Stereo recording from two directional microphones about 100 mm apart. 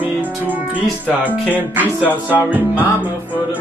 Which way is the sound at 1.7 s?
15° right (ahead or behind).